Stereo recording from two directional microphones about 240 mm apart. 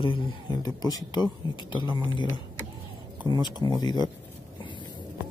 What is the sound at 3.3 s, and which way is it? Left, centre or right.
Speech, centre.